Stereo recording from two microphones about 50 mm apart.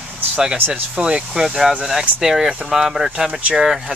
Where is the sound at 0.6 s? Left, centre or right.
Right.